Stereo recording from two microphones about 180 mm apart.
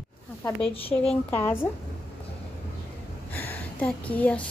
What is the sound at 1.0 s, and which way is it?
Speech, 10° left (ahead or behind).